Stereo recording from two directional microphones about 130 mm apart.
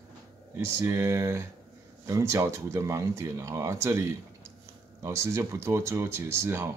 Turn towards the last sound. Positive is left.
turn(degrees=-20)  # may be behind; listen again after turning